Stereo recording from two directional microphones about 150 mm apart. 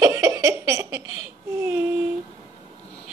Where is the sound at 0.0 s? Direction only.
20° right (ahead or behind).